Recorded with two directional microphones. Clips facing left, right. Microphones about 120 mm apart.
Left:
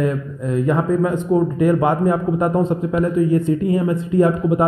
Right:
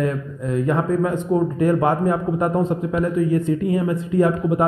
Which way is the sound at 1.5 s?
15° left (ahead or behind).